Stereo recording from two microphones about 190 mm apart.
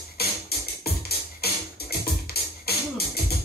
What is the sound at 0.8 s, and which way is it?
Music, 55° left (ahead or behind).